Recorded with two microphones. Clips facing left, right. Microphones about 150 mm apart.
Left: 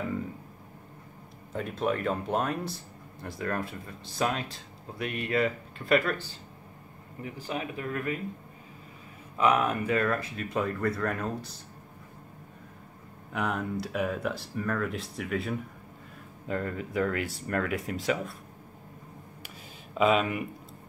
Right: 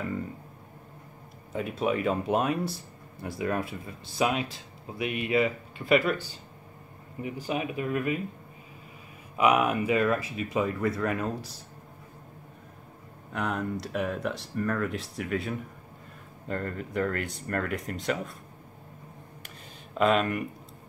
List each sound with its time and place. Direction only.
1.5 s speech: 5° right (ahead or behind)
7.2 s speech: 15° right (ahead or behind)
9.4 s speech: 10° right (ahead or behind)
13.3 s speech: 5° left (ahead or behind)
19.9 s speech: 5° left (ahead or behind)